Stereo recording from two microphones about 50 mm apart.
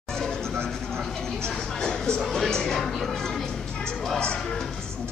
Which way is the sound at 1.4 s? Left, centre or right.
Centre.